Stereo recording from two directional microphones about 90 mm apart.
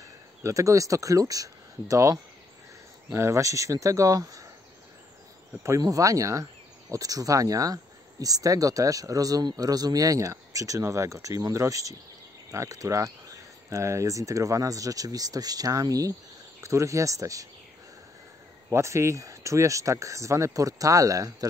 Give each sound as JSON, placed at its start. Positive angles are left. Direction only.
{"t": 0.4, "sound": "speech", "side_deg": -35}
{"t": 5.6, "sound": "speech", "side_deg": -40}
{"t": 18.7, "sound": "speech", "side_deg": -35}